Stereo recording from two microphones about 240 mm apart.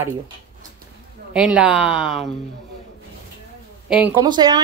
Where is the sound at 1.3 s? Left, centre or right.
Centre.